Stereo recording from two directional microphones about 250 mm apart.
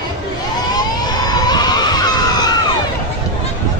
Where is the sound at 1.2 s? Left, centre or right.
Centre.